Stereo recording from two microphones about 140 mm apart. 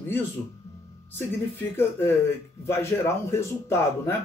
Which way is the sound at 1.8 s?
15° left (ahead or behind).